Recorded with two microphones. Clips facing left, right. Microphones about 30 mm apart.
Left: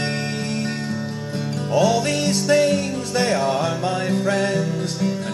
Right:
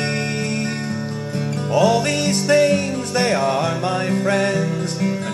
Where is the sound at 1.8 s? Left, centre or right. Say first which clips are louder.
Right 3 dB; right.